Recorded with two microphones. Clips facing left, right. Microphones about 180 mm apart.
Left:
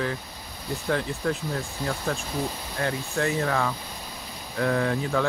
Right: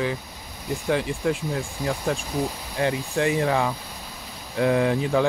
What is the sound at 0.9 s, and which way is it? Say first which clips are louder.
Speech: right 3 dB; 10° right (ahead or behind).